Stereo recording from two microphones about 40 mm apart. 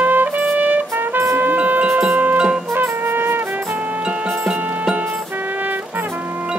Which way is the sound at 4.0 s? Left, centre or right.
Right.